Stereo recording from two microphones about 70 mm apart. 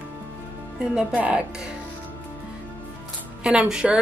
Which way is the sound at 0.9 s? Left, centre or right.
Centre.